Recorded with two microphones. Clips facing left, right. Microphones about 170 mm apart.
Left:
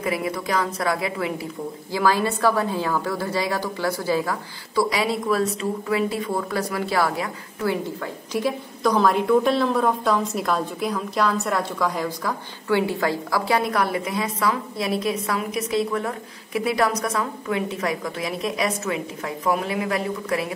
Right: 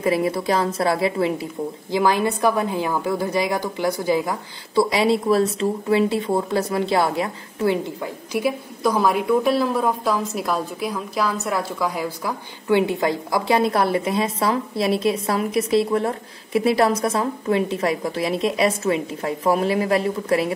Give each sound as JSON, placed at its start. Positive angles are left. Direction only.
{"t": 0.0, "sound": "a woman's voice", "side_deg": -30}
{"t": 12.6, "sound": "a woman's voice", "side_deg": -20}